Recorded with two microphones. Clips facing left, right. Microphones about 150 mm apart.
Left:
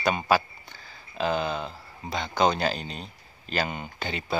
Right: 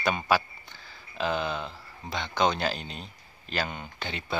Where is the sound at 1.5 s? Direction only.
35° left (ahead or behind).